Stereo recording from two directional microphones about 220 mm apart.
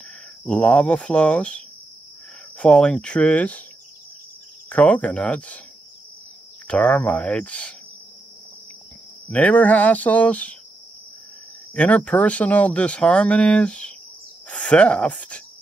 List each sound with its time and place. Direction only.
0.5 s speech: 5° left (ahead or behind)
2.6 s speech: 5° left (ahead or behind)
4.6 s speech: 5° left (ahead or behind)
6.7 s speech: 5° left (ahead or behind)
9.3 s speech: 5° left (ahead or behind)
11.7 s speech: 5° left (ahead or behind)